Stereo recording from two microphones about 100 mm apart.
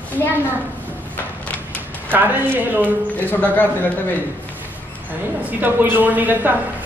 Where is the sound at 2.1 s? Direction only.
20° right (ahead or behind).